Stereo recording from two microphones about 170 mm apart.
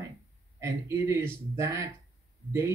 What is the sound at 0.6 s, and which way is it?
Speech, 15° right (ahead or behind).